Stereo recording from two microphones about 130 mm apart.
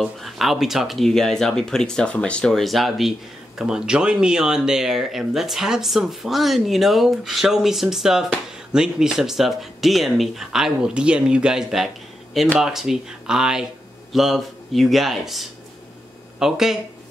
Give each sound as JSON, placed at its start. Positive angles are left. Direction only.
{"t": 0.0, "sound": "speech", "side_deg": 0}